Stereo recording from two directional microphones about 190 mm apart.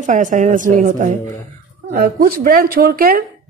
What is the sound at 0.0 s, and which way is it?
A woman's voice, 40° right (ahead or behind).